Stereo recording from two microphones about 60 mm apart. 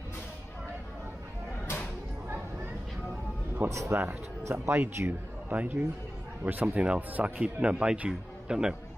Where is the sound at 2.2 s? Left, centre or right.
Right.